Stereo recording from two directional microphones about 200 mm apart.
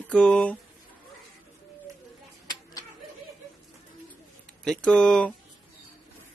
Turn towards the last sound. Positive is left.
turn(degrees=5)  # may be behind; listen again after turning